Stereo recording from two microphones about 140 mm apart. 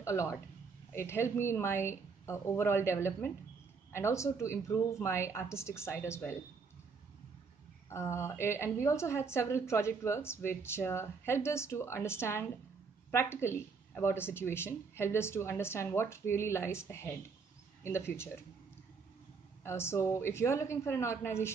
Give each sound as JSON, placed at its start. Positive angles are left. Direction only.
{"t": 0.0, "sound": "a woman's voice", "side_deg": 20}
{"t": 7.9, "sound": "a woman's voice", "side_deg": 20}
{"t": 19.6, "sound": "a woman's voice", "side_deg": 20}